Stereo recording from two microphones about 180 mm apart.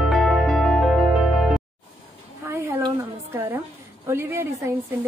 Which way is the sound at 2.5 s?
15° right (ahead or behind).